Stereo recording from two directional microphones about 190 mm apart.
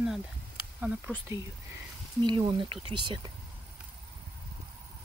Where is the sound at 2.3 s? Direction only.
25° right (ahead or behind).